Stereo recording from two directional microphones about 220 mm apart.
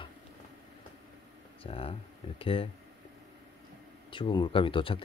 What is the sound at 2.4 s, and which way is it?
Speech, 25° left (ahead or behind).